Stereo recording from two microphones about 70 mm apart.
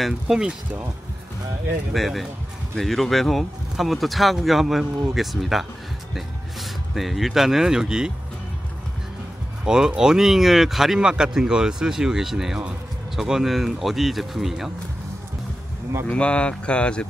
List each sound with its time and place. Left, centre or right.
0.0 s speech: centre
1.9 s speech: centre
9.7 s speech: centre
16.1 s speech: centre